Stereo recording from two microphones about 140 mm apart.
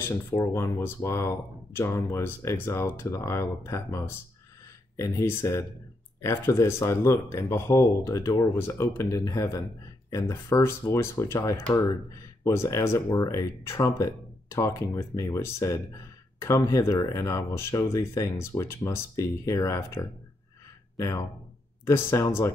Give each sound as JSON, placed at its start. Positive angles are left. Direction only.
{"t": 0.4, "sound": "speech", "side_deg": 20}
{"t": 21.8, "sound": "speech", "side_deg": 20}